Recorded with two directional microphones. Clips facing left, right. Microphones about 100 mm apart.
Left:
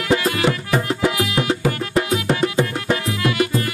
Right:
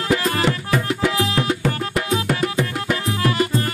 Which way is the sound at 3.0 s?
35° right (ahead or behind).